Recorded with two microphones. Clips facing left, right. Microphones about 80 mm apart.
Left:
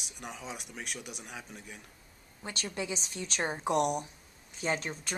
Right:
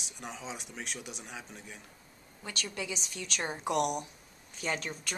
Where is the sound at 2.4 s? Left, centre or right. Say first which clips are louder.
Left 2 dB; left.